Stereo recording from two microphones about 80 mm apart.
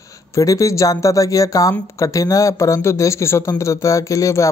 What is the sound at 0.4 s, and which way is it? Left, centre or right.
Speech, left.